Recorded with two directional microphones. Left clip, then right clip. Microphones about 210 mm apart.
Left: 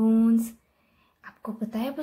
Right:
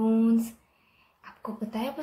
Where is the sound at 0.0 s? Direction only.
35° left (ahead or behind).